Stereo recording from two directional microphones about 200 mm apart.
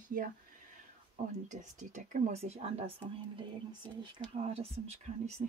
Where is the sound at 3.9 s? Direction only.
25° right (ahead or behind).